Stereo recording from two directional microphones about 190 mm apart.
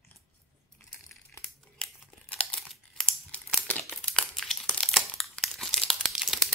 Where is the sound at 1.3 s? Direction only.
5° left (ahead or behind).